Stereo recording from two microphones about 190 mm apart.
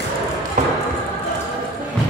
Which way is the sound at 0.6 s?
40° right (ahead or behind).